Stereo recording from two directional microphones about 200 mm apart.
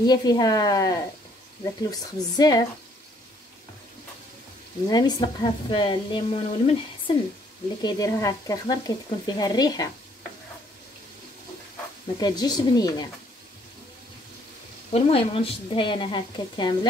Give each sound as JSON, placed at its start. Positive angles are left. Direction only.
{"t": 0.0, "sound": "speech", "side_deg": 20}
{"t": 4.8, "sound": "speech", "side_deg": 20}
{"t": 7.8, "sound": "speech", "side_deg": 20}
{"t": 12.2, "sound": "speech", "side_deg": 20}
{"t": 14.9, "sound": "speech", "side_deg": 30}